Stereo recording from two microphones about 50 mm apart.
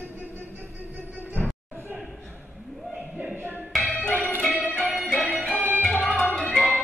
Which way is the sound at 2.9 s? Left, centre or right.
Right.